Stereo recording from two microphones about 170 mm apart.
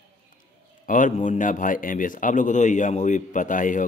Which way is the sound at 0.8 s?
50° left (ahead or behind).